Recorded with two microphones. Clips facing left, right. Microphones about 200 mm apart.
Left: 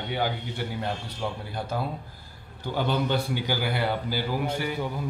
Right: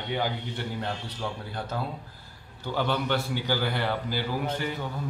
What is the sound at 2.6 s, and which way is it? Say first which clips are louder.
A man's voice: left 1 dB; 15° left (ahead or behind).